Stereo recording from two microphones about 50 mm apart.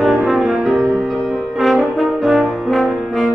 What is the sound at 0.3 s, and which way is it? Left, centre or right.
Music, centre.